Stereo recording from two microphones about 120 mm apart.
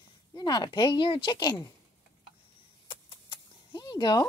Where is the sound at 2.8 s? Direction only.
45° left (ahead or behind).